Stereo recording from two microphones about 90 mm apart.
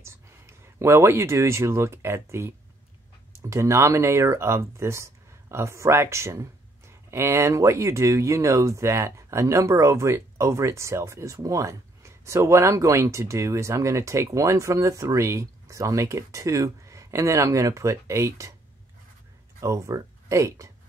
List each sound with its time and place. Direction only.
0.0 s speech: 30° right (ahead or behind)
19.6 s speech: 35° right (ahead or behind)